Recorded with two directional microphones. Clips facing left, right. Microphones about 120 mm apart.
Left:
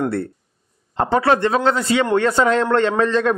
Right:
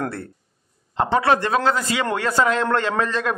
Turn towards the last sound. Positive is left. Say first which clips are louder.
# left 6 dB
turn(degrees=30)  # may be behind; listen again after turning